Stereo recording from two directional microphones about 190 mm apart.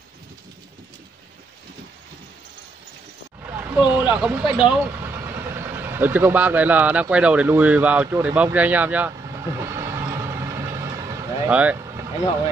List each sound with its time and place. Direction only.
3.4 s speech: 10° right (ahead or behind)
9.7 s vehicle: 15° right (ahead or behind)
11.5 s speech: 5° right (ahead or behind)